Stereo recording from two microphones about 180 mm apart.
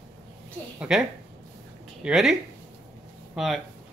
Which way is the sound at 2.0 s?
5° right (ahead or behind).